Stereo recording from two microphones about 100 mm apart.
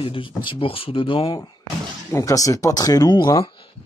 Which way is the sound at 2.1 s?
35° left (ahead or behind).